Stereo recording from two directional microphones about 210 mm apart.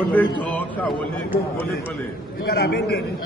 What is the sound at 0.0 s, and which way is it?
A man's voice, 5° left (ahead or behind).